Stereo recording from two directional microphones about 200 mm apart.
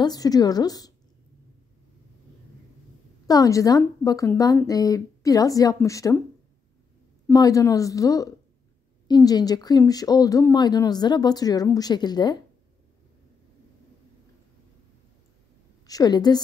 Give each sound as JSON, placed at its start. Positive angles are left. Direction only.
{"t": 0.0, "sound": "speech", "side_deg": 20}
{"t": 3.3, "sound": "a woman's voice", "side_deg": 15}
{"t": 7.2, "sound": "a woman's voice", "side_deg": 15}
{"t": 15.9, "sound": "speech", "side_deg": 20}